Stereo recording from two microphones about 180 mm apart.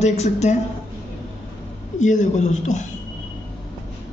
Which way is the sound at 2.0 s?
40° left (ahead or behind).